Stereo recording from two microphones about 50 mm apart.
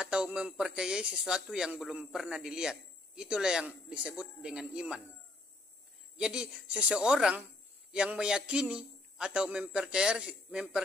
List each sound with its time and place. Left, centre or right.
0.0 s a man's voice: centre
6.1 s a man's voice: centre